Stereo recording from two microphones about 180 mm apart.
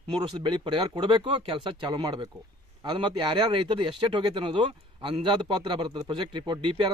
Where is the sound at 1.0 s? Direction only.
30° right (ahead or behind).